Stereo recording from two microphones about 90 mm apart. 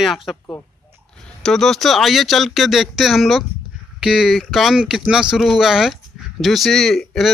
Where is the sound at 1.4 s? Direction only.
5° left (ahead or behind).